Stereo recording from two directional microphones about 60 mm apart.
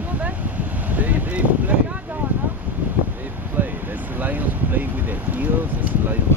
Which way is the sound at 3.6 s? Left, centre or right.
Right.